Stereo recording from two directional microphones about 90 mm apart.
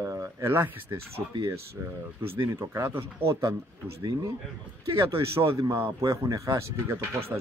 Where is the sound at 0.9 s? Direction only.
60° right (ahead or behind).